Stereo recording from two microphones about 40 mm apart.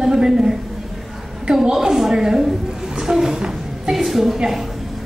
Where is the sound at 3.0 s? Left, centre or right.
Centre.